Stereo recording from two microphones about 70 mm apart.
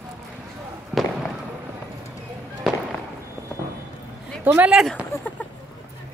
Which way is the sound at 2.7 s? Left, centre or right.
Centre.